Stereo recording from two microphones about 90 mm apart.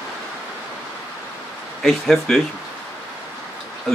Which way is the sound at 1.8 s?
5° left (ahead or behind).